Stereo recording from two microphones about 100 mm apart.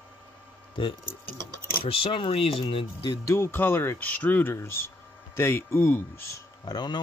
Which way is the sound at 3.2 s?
25° left (ahead or behind).